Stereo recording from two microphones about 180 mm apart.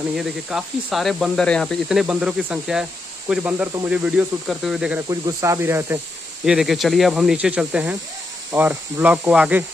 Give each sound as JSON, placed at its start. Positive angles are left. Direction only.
{"t": 0.1, "sound": "speech", "side_deg": 0}
{"t": 5.1, "sound": "speech", "side_deg": -15}
{"t": 6.4, "sound": "speech", "side_deg": -5}